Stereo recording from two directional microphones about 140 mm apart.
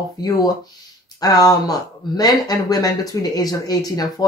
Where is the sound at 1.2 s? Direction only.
25° left (ahead or behind).